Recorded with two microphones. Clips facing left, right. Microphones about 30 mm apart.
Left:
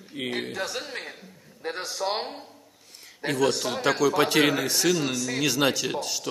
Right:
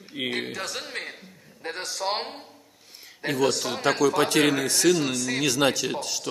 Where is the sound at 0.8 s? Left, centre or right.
Centre.